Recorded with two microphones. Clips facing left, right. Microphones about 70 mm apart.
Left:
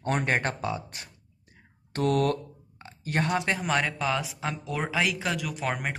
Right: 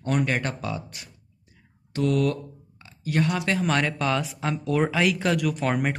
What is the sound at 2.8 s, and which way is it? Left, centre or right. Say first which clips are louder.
Speech: right 4 dB; left.